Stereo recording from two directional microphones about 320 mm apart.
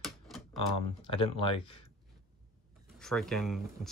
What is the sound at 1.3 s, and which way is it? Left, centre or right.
Speech, centre.